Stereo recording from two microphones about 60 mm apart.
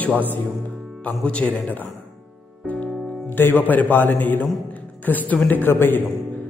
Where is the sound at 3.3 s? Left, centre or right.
Left.